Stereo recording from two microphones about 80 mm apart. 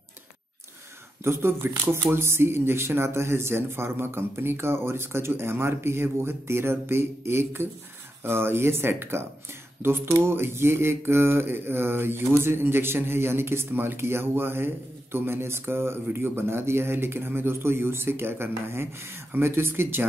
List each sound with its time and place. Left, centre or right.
1.2 s speech: right
8.2 s mantra: right